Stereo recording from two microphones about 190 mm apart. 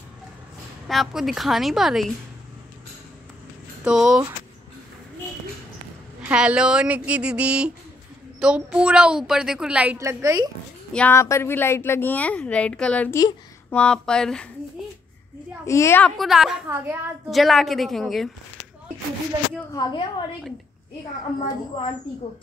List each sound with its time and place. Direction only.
0.8 s a woman's voice: centre (ahead or behind)
3.8 s a woman's voice: 5° right (ahead or behind)
6.2 s a woman's voice: 5° right (ahead or behind)
10.9 s a woman's voice: 10° left (ahead or behind)
15.6 s a woman's voice: 15° left (ahead or behind)
16.2 s a woman's voice: centre (ahead or behind)
16.6 s a woman's voice: 15° right (ahead or behind)
17.3 s a woman's voice: centre (ahead or behind)
19.7 s a woman's voice: 20° left (ahead or behind)